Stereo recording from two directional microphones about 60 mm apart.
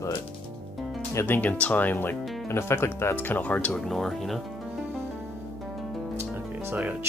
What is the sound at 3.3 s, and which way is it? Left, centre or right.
Speech, left.